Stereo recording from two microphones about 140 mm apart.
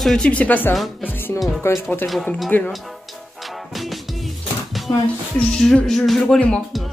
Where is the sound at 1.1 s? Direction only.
15° left (ahead or behind).